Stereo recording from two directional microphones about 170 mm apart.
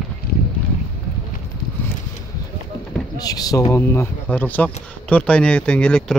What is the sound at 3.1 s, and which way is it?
Speech, 20° left (ahead or behind).